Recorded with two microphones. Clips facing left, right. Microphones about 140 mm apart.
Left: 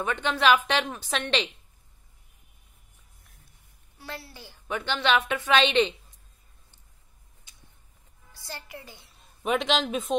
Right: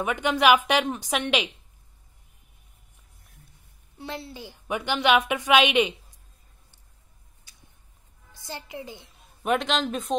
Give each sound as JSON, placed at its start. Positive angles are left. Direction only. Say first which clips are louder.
{"t": 0.0, "sound": "a woman's voice", "louder": "right 3 dB", "side_deg": -10}
{"t": 4.0, "sound": "a woman's voice", "louder": "right 5 dB", "side_deg": -20}
{"t": 8.3, "sound": "a woman's voice", "louder": "right 3 dB", "side_deg": -15}
{"t": 9.4, "sound": "a man's voice", "louder": "right 1 dB", "side_deg": 0}